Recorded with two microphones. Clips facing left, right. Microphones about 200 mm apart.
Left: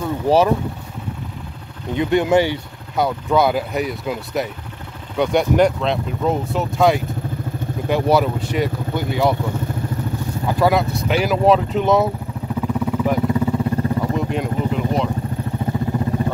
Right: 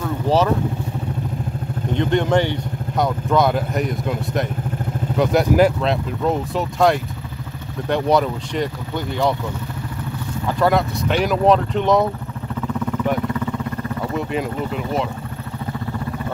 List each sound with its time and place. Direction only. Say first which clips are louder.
0.0 s vehicle: left 2 dB; 10° left (ahead or behind)
2.0 s speech: left 2 dB; 10° left (ahead or behind)
10.6 s speech: even; 5° left (ahead or behind)
12.8 s vehicle: left 1 dB; 5° left (ahead or behind)
13.3 s vehicle: left 5 dB; 25° left (ahead or behind)
14.1 s vehicle: left 1 dB; centre (ahead or behind)